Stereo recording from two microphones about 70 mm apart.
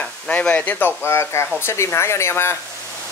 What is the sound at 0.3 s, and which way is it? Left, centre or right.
Speech, centre.